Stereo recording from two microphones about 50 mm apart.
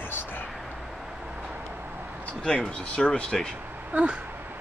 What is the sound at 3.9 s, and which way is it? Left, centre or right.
Speech, right.